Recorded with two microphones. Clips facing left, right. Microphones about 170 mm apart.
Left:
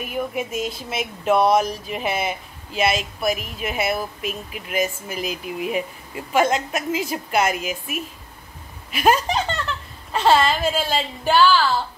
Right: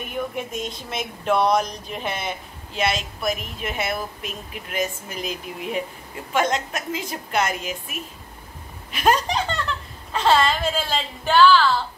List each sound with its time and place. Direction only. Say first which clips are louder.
0.0 s a woman's voice: left 2 dB; 5° left (ahead or behind)